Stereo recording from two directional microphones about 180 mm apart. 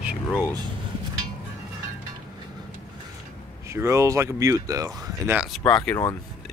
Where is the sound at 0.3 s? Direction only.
15° left (ahead or behind).